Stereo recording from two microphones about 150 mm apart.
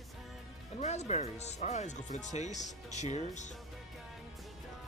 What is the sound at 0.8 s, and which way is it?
Speech, 50° left (ahead or behind).